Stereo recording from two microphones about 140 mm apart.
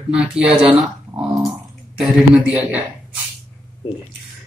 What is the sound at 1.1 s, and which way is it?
Dog, 30° right (ahead or behind).